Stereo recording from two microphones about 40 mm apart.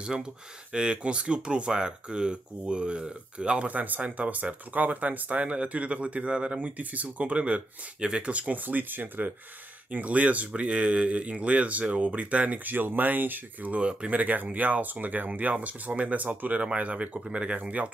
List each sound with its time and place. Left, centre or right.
0.0 s speech: right
3.6 s speech: right
8.6 s speech: right
9.8 s speech: right
13.7 s speech: right
14.1 s speech: right
17.6 s speech: right